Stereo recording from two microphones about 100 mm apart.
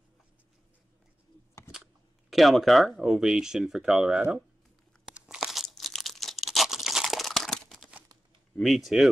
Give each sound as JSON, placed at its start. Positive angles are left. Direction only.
{"t": 2.3, "sound": "speech", "side_deg": 0}
{"t": 5.0, "sound": "tearing", "side_deg": -5}
{"t": 8.5, "sound": "speech", "side_deg": 0}